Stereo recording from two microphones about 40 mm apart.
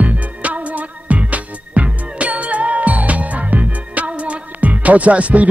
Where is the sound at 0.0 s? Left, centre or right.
Right.